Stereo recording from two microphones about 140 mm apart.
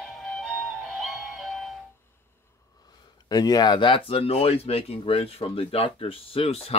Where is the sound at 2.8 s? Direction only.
30° left (ahead or behind).